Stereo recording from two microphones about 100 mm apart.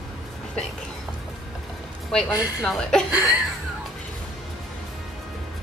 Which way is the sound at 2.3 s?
40° left (ahead or behind).